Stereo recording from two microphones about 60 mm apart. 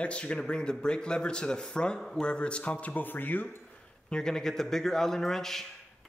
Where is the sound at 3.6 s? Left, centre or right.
Centre.